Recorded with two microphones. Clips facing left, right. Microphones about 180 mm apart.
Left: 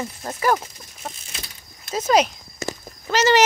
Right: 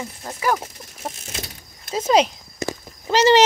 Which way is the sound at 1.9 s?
25° right (ahead or behind).